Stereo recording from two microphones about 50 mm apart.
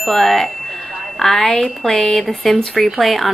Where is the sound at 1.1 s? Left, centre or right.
Centre.